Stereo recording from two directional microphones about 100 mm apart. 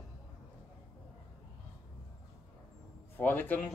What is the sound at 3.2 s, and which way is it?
Speech, 20° left (ahead or behind).